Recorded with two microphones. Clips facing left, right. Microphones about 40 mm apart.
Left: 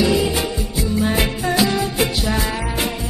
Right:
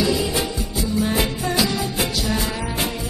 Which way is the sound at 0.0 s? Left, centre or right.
Left.